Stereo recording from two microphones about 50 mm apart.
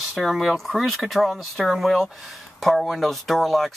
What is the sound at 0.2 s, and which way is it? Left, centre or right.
Speech, centre.